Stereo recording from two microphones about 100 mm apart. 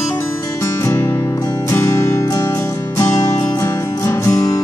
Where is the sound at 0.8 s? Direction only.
25° left (ahead or behind).